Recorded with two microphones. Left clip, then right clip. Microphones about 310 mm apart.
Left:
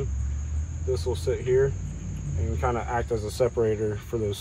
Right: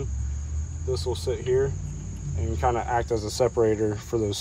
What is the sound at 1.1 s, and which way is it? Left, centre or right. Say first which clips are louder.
Speech: left 1 dB; right.